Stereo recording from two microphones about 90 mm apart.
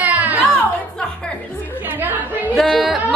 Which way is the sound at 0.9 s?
10° left (ahead or behind).